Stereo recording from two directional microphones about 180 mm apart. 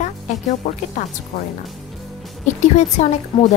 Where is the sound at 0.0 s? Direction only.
45° left (ahead or behind).